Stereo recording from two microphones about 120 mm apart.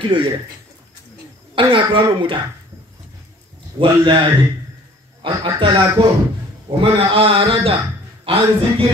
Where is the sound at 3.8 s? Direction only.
40° right (ahead or behind).